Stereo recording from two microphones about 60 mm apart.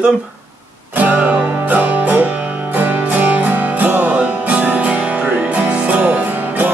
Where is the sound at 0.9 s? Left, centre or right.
Right.